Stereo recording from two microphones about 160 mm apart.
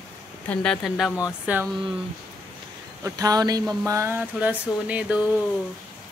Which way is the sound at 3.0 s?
20° right (ahead or behind).